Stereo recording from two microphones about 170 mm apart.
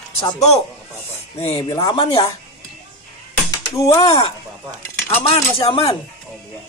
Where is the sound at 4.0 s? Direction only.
30° left (ahead or behind).